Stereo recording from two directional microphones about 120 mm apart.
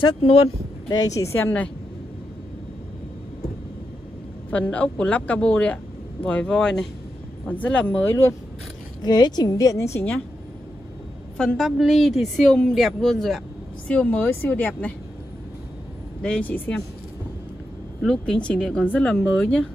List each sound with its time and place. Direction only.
0.8 s a woman's voice: 30° left (ahead or behind); by 1.7 s 15° left (ahead or behind)
4.5 s a woman's voice: 10° left (ahead or behind)
9.0 s a woman's voice: 35° left (ahead or behind)
11.3 s a woman's voice: 5° left (ahead or behind)
16.2 s a woman's voice: 10° left (ahead or behind)
18.0 s a woman's voice: 5° left (ahead or behind)